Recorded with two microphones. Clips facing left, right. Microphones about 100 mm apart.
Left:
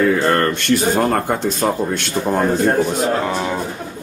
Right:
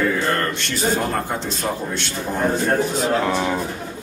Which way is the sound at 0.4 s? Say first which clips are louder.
Left 7 dB; 55° left (ahead or behind).